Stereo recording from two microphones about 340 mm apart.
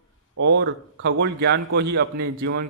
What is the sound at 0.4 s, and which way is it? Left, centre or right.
A man's voice, right.